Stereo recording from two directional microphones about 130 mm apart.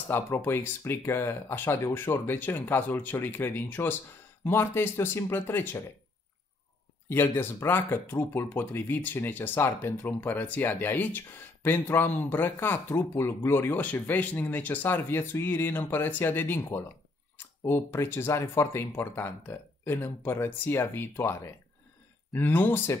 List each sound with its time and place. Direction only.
0.1 s speech: 15° left (ahead or behind)
7.1 s speech: 15° left (ahead or behind)